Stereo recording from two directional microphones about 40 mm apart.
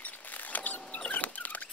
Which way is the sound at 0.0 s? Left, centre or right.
Left.